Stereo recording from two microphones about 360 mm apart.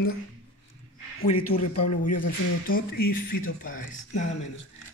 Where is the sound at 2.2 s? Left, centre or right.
Left.